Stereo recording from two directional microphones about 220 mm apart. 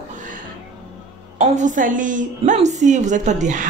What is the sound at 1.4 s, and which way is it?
A woman's voice, 35° right (ahead or behind).